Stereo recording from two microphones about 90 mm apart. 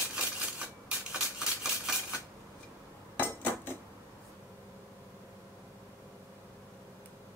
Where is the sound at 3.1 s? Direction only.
20° left (ahead or behind).